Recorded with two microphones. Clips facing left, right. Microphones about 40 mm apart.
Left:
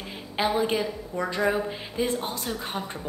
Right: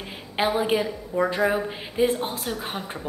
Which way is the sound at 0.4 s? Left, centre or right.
Centre.